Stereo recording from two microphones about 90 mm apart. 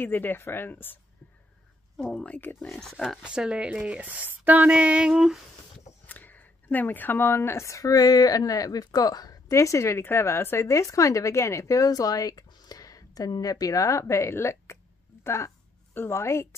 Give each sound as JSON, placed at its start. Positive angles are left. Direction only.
{"t": 0.0, "sound": "speech", "side_deg": 20}
{"t": 2.1, "sound": "speech", "side_deg": 15}
{"t": 2.7, "sound": "speech", "side_deg": 0}
{"t": 6.0, "sound": "a woman's voice", "side_deg": 20}